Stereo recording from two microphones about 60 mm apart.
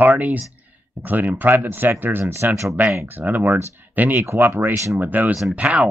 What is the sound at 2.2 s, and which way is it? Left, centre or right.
Speech, right.